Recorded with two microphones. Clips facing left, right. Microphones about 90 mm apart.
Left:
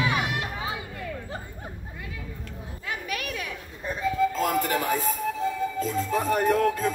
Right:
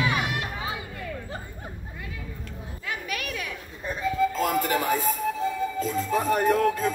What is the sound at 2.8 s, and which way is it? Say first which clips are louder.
Children playing: even; 30° left (ahead or behind).